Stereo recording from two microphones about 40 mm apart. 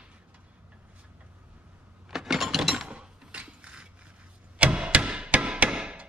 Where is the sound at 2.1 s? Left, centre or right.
Centre.